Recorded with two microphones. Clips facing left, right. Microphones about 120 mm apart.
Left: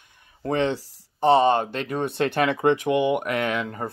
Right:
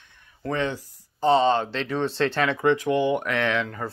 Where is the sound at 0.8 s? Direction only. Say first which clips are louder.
Even; 75° left (ahead or behind).